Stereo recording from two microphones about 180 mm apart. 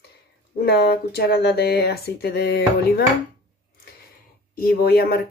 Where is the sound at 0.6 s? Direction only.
60° left (ahead or behind).